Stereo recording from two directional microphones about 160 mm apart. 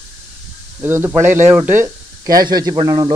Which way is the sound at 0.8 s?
15° right (ahead or behind).